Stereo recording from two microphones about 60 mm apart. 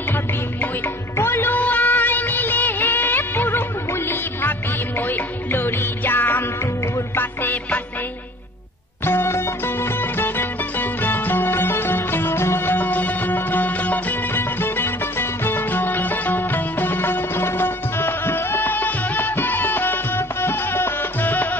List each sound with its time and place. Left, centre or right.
1.1 s music of bollywood: left
7.2 s music: left
9.0 s music: left
14.3 s music: left